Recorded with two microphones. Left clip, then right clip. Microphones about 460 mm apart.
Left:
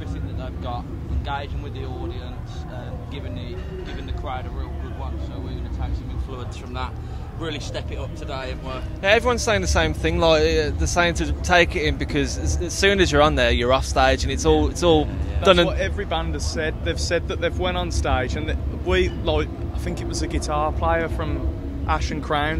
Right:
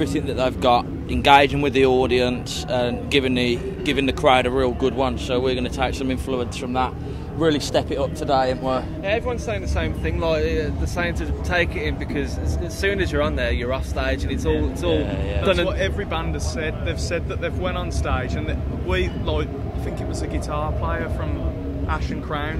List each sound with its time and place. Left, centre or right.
0.0 s speech: right
6.3 s speech: right
9.0 s speech: left